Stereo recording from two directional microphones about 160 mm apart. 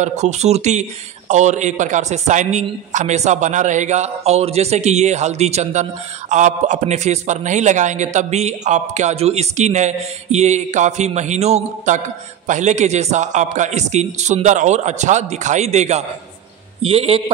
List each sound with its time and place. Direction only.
0.0 s a man's voice: 45° right (ahead or behind)